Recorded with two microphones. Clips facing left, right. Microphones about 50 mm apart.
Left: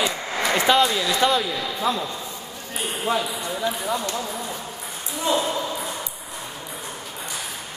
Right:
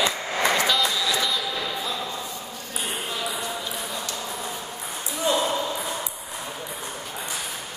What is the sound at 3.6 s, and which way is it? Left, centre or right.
Ping, left.